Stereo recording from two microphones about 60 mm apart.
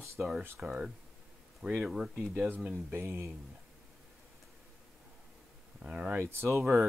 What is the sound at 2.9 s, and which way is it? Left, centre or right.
Speech, right.